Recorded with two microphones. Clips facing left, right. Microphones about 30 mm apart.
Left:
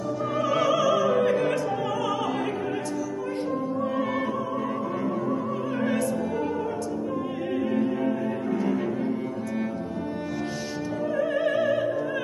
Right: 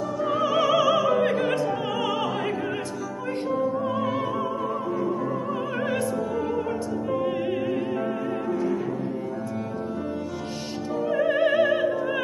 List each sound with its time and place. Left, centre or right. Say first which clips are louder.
0.3 s opera: right 2 dB; right
11.1 s opera: right 4 dB; right